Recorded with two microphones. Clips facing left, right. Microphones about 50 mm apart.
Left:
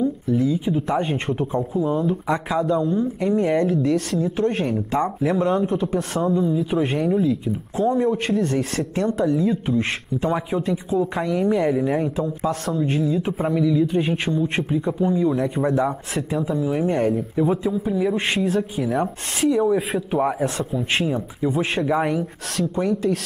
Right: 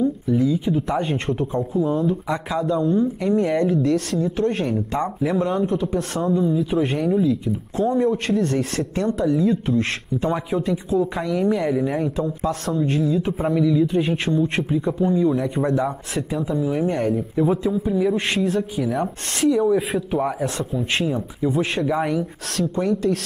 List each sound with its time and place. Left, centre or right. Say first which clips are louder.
0.0 s speech: right 1 dB; centre
12.2 s speech: even; centre
18.1 s speech: even; centre
18.4 s speech: even; centre